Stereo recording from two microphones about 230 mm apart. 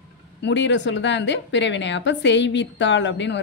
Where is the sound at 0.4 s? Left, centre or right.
Left.